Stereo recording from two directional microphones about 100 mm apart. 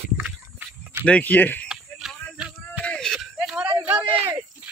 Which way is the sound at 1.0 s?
15° left (ahead or behind).